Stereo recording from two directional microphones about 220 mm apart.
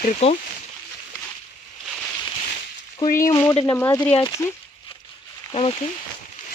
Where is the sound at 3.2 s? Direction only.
15° left (ahead or behind).